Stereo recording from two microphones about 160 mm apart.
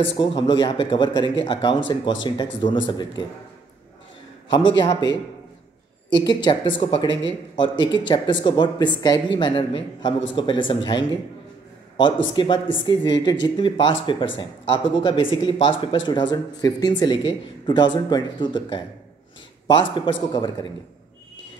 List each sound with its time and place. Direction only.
0.2 s speech: 30° left (ahead or behind)
4.5 s speech: 30° left (ahead or behind)
6.1 s speech: 30° left (ahead or behind)